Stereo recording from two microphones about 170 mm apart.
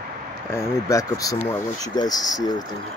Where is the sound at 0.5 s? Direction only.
20° left (ahead or behind).